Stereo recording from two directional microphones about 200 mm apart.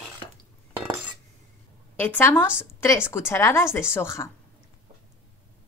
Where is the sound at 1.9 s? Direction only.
10° left (ahead or behind).